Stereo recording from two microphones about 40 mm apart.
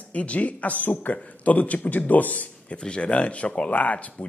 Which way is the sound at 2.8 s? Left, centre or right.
Left.